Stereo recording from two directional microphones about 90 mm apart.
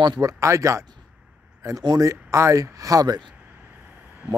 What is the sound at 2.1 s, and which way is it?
Speech, 35° right (ahead or behind).